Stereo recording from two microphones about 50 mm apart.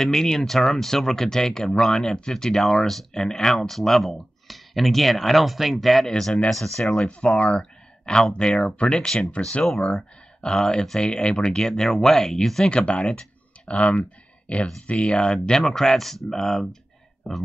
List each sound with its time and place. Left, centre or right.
0.0 s speech: centre
7.1 s speech: left
12.7 s speech: left
14.9 s speech: left